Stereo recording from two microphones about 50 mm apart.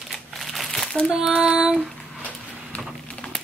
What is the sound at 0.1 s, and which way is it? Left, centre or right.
Crumpling, centre.